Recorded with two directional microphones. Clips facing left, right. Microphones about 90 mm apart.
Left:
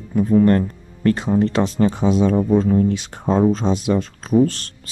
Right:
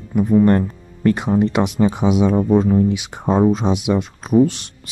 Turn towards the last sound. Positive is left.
turn(degrees=-15)  # may be behind; listen again after turning